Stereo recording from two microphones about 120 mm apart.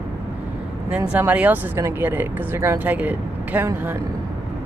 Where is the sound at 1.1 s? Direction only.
15° right (ahead or behind).